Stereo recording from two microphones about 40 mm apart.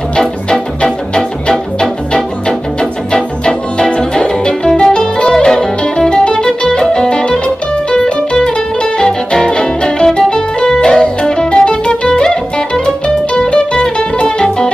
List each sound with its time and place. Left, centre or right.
0.5 s music: centre